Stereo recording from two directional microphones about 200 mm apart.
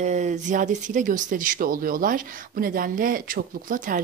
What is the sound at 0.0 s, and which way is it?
Speech, 35° right (ahead or behind).